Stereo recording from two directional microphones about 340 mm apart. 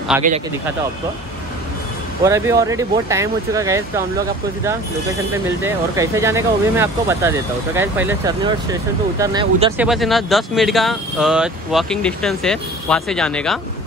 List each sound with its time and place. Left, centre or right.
0.1 s speech: centre
2.2 s speech: centre
5.6 s speech: centre